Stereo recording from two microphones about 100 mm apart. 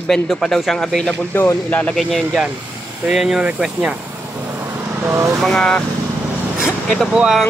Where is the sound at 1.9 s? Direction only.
Centre (ahead or behind).